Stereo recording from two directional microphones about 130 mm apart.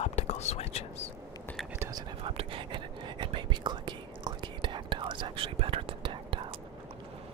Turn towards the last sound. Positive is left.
turn(degrees=-40)  # may be behind; listen again after turning